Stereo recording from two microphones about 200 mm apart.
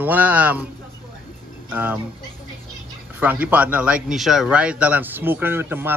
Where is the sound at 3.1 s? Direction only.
10° right (ahead or behind).